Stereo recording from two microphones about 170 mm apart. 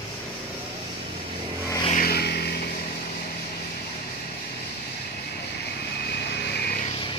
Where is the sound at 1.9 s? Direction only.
60° left (ahead or behind).